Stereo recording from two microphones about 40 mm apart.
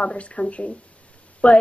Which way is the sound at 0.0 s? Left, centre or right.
Left.